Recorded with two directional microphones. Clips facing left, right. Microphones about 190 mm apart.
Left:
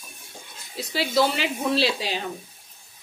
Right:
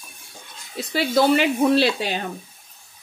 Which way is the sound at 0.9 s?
55° right (ahead or behind).